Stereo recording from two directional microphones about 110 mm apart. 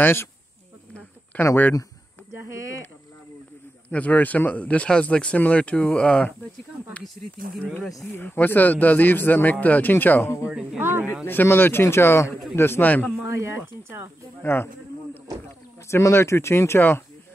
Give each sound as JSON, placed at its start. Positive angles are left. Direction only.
{"t": 0.0, "sound": "speech", "side_deg": 20}
{"t": 1.4, "sound": "speech", "side_deg": 25}
{"t": 2.3, "sound": "speech", "side_deg": -25}
{"t": 3.9, "sound": "speech", "side_deg": 15}
{"t": 8.0, "sound": "speech", "side_deg": 20}
{"t": 10.4, "sound": "speech", "side_deg": -10}
{"t": 11.2, "sound": "speech", "side_deg": 20}
{"t": 13.3, "sound": "speech", "side_deg": -25}
{"t": 14.4, "sound": "speech", "side_deg": 20}
{"t": 15.9, "sound": "speech", "side_deg": 25}